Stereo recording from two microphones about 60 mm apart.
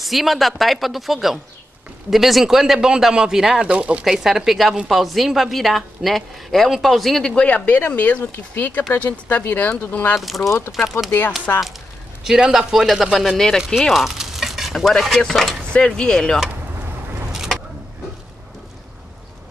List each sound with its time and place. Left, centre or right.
0.0 s a woman's voice: centre
3.7 s speech: right
4.0 s a woman's voice: centre
7.3 s speech: left
10.1 s a woman's voice: centre
11.5 s speech: left
12.2 s speech: centre
13.7 s stir: centre
15.7 s speech: centre
17.3 s vehicle: centre